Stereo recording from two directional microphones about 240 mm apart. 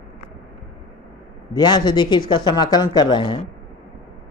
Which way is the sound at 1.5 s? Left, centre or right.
Centre.